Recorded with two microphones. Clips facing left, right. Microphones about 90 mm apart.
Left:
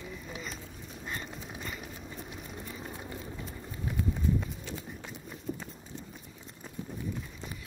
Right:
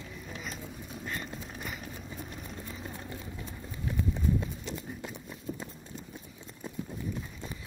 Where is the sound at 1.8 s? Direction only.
5° left (ahead or behind).